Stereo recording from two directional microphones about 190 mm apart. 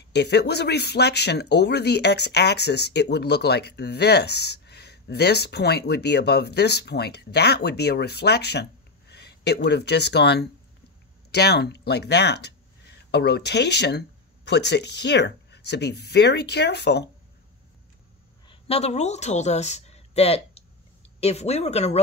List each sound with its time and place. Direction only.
0.1 s speech: 60° left (ahead or behind)
18.5 s speech: 30° left (ahead or behind)